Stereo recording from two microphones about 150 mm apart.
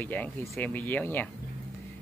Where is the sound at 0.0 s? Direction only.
10° left (ahead or behind).